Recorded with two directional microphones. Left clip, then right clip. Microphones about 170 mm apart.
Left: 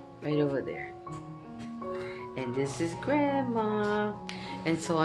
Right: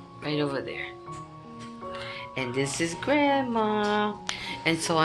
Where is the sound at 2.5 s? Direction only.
30° right (ahead or behind).